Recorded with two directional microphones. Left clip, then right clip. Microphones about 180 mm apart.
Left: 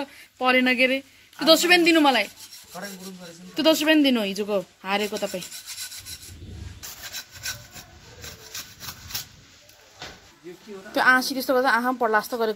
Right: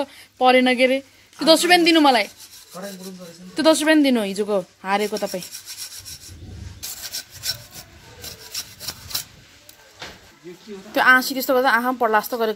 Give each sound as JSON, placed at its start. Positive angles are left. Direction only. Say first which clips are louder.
{"t": 0.0, "sound": "speech", "louder": "right 7 dB", "side_deg": -20}
{"t": 3.5, "sound": "speech", "louder": "right 3 dB", "side_deg": -20}
{"t": 10.9, "sound": "a woman's voice", "louder": "right 4 dB", "side_deg": 0}